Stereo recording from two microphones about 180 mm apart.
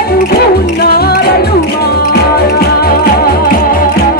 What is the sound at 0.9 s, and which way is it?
Music, 60° left (ahead or behind).